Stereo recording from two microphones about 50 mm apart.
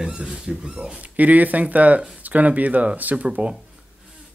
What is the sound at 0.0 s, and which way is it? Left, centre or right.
Speech, centre.